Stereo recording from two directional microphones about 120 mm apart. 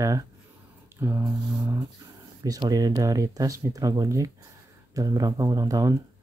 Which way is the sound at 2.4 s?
30° right (ahead or behind).